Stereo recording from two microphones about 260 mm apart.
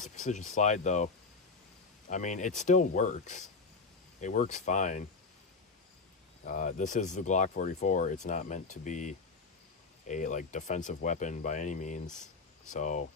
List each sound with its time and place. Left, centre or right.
0.0 s speech: left
6.4 s speech: left